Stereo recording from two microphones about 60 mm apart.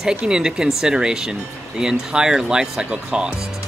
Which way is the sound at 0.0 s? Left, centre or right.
Centre.